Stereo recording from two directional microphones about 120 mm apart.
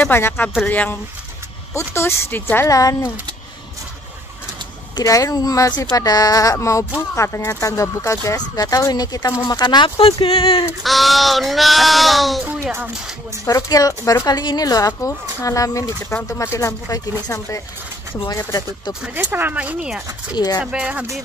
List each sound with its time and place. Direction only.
0.0 s speech: 15° left (ahead or behind)
4.9 s speech: 30° left (ahead or behind); by 10.6 s 50° left (ahead or behind)
10.8 s speech: centre (ahead or behind)
13.5 s speech: 30° left (ahead or behind)
18.3 s speech: 30° left (ahead or behind)
19.1 s speech: 15° right (ahead or behind)
20.3 s speech: 35° left (ahead or behind)
20.6 s speech: 10° right (ahead or behind)